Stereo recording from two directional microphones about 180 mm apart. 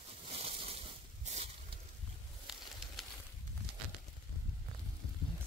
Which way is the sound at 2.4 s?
Centre (ahead or behind).